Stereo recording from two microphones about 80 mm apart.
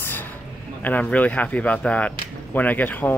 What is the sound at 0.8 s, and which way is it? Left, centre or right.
Speech, centre.